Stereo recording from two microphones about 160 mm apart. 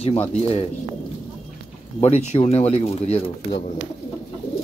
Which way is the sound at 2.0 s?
45° left (ahead or behind).